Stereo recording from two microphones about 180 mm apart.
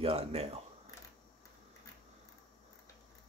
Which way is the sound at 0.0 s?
35° right (ahead or behind).